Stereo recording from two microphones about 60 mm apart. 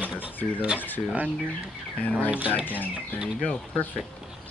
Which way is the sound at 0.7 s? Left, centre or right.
Left.